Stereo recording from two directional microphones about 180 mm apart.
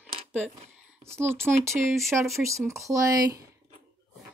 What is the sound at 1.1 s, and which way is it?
Speech, 15° right (ahead or behind).